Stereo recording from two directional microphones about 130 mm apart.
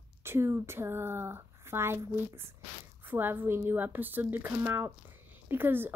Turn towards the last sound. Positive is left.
turn(degrees=-15)  # may be behind; listen again after turning